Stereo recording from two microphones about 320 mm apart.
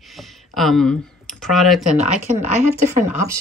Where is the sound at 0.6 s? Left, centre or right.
Centre.